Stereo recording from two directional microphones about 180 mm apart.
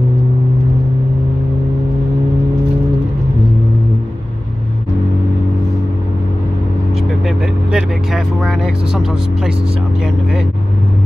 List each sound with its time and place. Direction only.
7.2 s vehicle: centre (ahead or behind)
8.5 s speech: centre (ahead or behind)